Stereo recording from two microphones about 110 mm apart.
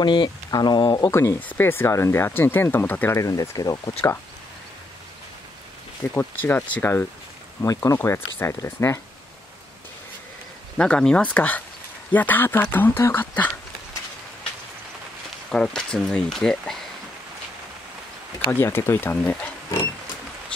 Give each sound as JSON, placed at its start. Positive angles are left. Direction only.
{"t": 0.0, "sound": "speech", "side_deg": 45}
{"t": 1.1, "sound": "speech", "side_deg": 20}
{"t": 3.2, "sound": "speech", "side_deg": 35}
{"t": 6.1, "sound": "speech", "side_deg": 20}
{"t": 7.6, "sound": "speech", "side_deg": 30}
{"t": 10.8, "sound": "speech", "side_deg": 10}
{"t": 15.5, "sound": "speech", "side_deg": 5}
{"t": 18.5, "sound": "speech", "side_deg": 20}